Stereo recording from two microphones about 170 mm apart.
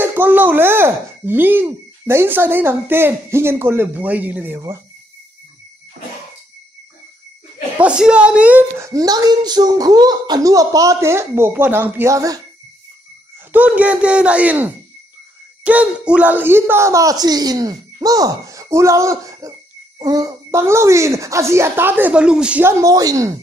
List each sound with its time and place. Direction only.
0.0 s speech: 10° right (ahead or behind)
7.7 s speech: 5° right (ahead or behind)
13.5 s speech: 10° right (ahead or behind)